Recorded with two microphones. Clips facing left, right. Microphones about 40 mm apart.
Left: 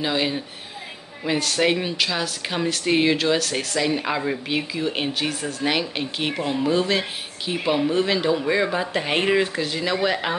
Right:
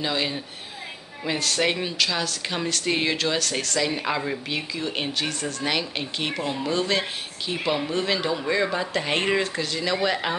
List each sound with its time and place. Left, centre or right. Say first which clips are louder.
0.0 s speech: left 3 dB; centre